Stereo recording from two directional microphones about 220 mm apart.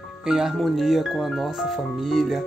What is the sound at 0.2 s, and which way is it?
Speech, centre (ahead or behind).